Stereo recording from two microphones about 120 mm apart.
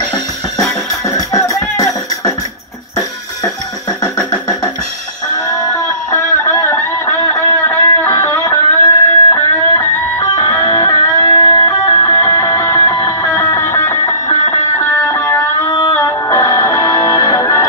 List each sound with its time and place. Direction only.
1.1 s music: 30° left (ahead or behind)
5.3 s music: 30° left (ahead or behind)